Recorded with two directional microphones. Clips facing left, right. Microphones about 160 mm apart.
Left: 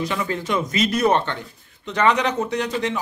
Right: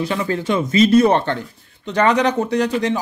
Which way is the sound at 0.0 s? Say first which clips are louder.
Right 4 dB; 30° right (ahead or behind).